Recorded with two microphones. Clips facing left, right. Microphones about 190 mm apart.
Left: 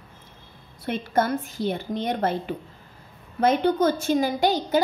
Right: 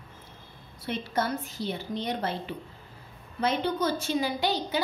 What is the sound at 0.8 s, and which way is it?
A woman's voice, 50° left (ahead or behind).